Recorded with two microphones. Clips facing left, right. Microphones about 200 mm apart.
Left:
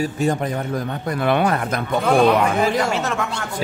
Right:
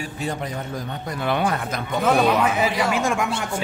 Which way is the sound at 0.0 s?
45° left (ahead or behind).